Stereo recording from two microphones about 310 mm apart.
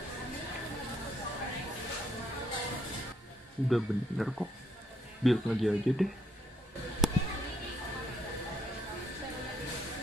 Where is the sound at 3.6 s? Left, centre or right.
Centre.